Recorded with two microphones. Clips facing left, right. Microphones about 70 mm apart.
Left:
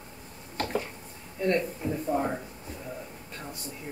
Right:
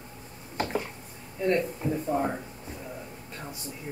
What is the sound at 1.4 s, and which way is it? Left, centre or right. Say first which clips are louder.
Speech: right 1 dB; centre.